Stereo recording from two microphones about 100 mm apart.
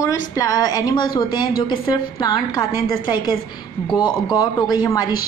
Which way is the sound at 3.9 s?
45° left (ahead or behind).